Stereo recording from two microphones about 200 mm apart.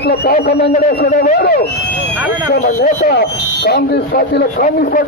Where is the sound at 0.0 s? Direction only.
50° left (ahead or behind).